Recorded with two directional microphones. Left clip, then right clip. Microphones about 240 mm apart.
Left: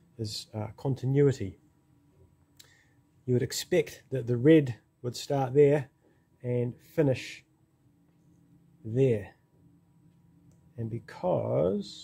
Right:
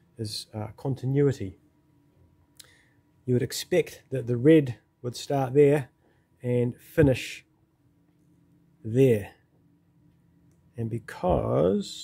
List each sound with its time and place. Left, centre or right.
0.2 s speech: centre
2.6 s a sound: centre
3.3 s speech: centre
6.4 s speech: right
8.9 s speech: right
10.8 s speech: right